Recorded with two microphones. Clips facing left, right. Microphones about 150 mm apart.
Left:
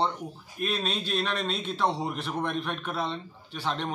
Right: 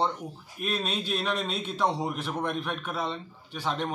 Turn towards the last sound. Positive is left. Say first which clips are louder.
# right 1 dB
turn(degrees=-5)  # may be behind; listen again after turning